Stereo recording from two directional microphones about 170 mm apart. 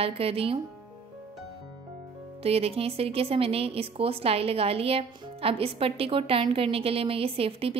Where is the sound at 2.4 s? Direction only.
35° right (ahead or behind).